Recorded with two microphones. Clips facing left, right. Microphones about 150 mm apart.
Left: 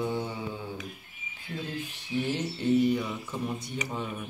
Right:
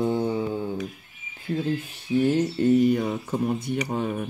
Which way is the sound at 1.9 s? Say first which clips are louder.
Right 8 dB; 45° right (ahead or behind).